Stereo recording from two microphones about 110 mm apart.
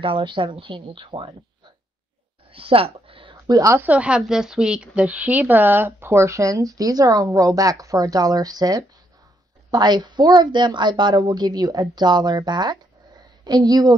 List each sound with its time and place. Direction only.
0.0 s speech: 50° right (ahead or behind)
2.5 s speech: 55° right (ahead or behind)
3.4 s a woman's voice: 30° right (ahead or behind)
3.8 s a woman's voice: 10° right (ahead or behind); by 13.9 s 35° right (ahead or behind)